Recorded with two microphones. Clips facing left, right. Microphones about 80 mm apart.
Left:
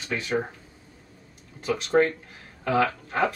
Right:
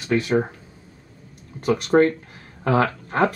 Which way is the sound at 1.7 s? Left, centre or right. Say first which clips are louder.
Right 5 dB; right.